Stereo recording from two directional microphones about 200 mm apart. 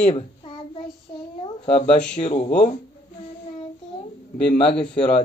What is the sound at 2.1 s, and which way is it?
Speech, 30° left (ahead or behind).